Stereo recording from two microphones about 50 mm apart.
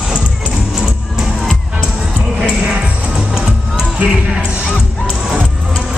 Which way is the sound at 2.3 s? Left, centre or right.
Right.